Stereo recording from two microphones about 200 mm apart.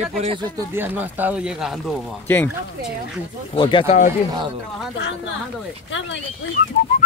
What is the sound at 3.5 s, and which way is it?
Speech, 25° left (ahead or behind).